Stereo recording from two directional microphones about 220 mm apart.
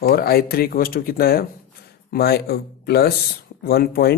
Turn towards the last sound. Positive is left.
turn(degrees=45)  # may be behind; listen again after turning